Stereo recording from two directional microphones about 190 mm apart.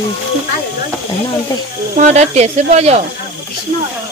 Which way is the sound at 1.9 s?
35° right (ahead or behind).